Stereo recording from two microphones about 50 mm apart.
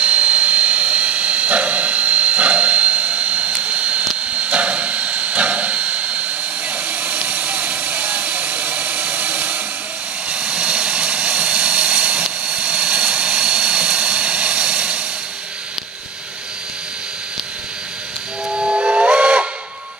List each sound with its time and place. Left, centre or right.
0.0 s vehicle: right
4.3 s a sound: right
10.3 s vehicle: centre
18.5 s steam whistle: centre